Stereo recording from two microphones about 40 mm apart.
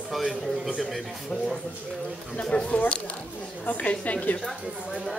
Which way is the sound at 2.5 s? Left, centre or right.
Left.